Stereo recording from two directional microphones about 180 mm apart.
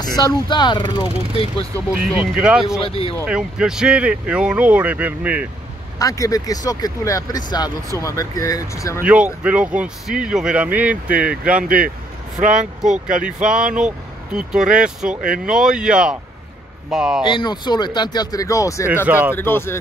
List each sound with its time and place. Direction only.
0.0 s speech: 20° left (ahead or behind)
2.0 s speech: 5° right (ahead or behind)
2.8 s speech: 30° left (ahead or behind)
3.3 s speech: 5° right (ahead or behind)
5.9 s speech: 20° left (ahead or behind)
9.0 s speech: 5° right (ahead or behind)
11.6 s speech: 50° right (ahead or behind)
13.4 s speech: 5° right (ahead or behind)
17.2 s speech: 25° left (ahead or behind)
19.0 s speech: 10° right (ahead or behind)
19.3 s speech: 10° left (ahead or behind)